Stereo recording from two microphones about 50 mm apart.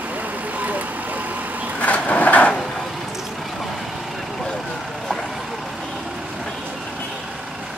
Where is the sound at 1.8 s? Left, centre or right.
Left.